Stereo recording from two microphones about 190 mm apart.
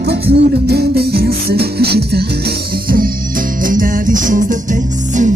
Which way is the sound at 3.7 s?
45° right (ahead or behind).